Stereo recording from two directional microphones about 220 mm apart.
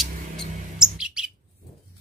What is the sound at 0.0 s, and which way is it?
Chirp, centre (ahead or behind).